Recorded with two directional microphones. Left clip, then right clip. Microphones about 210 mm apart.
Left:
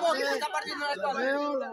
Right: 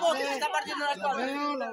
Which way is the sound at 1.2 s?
45° right (ahead or behind).